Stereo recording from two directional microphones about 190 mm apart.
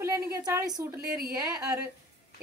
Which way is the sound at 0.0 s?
15° right (ahead or behind).